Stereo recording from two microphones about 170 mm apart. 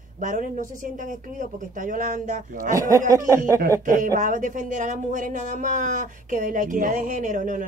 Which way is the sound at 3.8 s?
50° right (ahead or behind).